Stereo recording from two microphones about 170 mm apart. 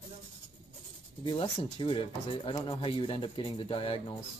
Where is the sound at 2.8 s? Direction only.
30° left (ahead or behind).